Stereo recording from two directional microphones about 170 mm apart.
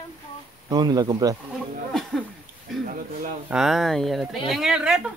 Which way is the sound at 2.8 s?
50° right (ahead or behind).